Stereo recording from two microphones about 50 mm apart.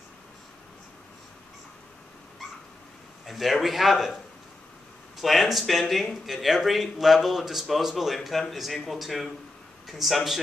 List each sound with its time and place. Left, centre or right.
3.3 s speech: centre